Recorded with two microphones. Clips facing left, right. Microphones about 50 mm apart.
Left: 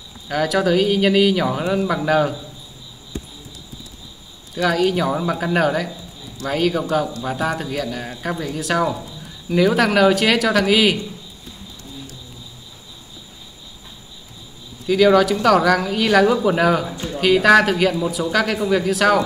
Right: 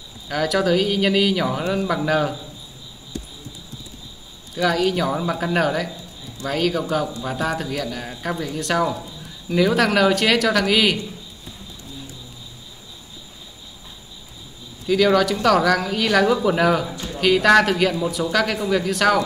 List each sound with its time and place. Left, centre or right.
0.3 s speech: centre
4.6 s speech: centre
14.9 s speech: centre
16.9 s speech: left
17.2 s speech: centre